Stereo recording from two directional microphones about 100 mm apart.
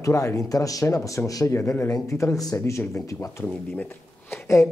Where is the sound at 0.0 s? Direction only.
30° left (ahead or behind).